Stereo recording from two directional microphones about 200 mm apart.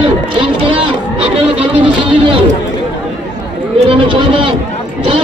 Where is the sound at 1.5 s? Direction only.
25° right (ahead or behind).